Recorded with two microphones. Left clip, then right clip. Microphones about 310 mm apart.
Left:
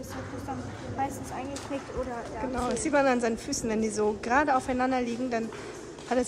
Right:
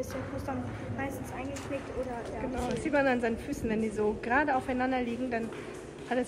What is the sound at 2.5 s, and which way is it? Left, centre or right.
A woman's voice, centre.